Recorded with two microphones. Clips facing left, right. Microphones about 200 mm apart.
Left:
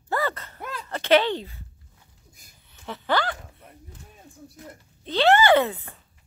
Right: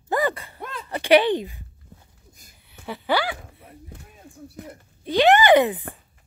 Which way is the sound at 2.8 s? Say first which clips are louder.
Right 2 dB; 10° right (ahead or behind).